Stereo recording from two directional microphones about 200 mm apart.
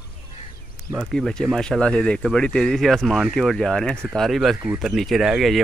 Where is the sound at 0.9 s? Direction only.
Centre (ahead or behind).